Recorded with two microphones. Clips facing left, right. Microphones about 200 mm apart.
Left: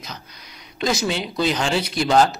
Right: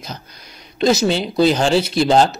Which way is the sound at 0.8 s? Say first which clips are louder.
Right 7 dB; 25° right (ahead or behind).